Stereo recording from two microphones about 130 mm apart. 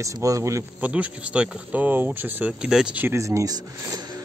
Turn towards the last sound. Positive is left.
turn(degrees=-30)  # may be behind; listen again after turning